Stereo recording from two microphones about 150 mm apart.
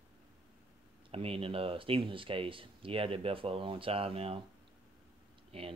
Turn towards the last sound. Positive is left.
turn(degrees=-40)  # may be behind; listen again after turning